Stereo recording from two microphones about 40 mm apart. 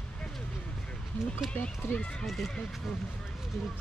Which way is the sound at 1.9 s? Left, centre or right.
Left.